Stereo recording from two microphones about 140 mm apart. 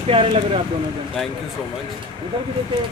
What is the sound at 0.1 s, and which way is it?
Speech, 45° right (ahead or behind).